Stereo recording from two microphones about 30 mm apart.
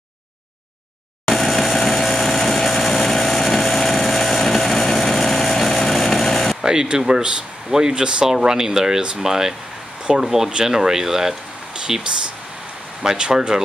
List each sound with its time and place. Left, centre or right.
1.2 s vehicle: centre
5.0 s a sound: centre
6.6 s speech: right
8.3 s speech: centre